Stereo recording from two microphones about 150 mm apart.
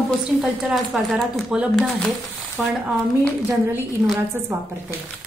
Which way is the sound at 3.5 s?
15° right (ahead or behind).